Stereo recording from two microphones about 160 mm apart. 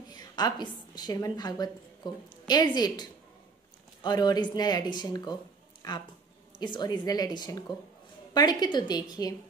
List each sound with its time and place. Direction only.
0.1 s a woman's voice: 25° left (ahead or behind)
5.8 s a sound: 25° left (ahead or behind)
6.6 s speech: 25° left (ahead or behind)